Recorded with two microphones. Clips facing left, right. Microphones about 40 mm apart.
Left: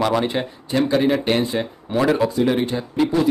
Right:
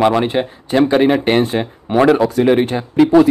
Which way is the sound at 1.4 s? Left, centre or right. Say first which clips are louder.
Right 5 dB; right.